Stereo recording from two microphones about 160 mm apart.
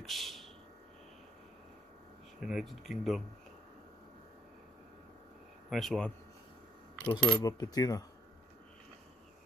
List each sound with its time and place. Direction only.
0.0 s a sound: centre (ahead or behind)
2.4 s speech: centre (ahead or behind)
5.7 s speech: centre (ahead or behind)
7.4 s coin: 25° left (ahead or behind)